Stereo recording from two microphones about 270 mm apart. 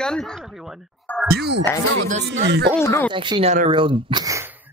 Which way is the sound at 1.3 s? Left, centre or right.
Right.